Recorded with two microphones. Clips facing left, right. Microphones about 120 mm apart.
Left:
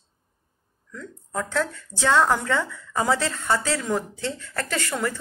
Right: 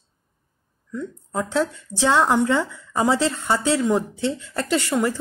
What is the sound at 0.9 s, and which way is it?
Speech, 20° right (ahead or behind).